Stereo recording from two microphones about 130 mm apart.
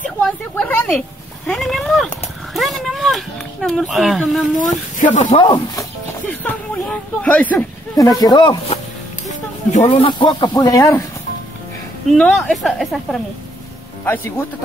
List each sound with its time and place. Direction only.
0.0 s a sound: 10° left (ahead or behind)
1.5 s a sound: centre (ahead or behind)
4.6 s speech: 80° left
5.3 s speech: 40° left (ahead or behind)
6.4 s speech: 10° left (ahead or behind)
7.9 s speech: 30° left (ahead or behind)
9.3 s a sound: 65° left (ahead or behind)
9.8 s speech: 40° left (ahead or behind); by 11.1 s 25° left (ahead or behind)
12.1 s speech: 5° left (ahead or behind)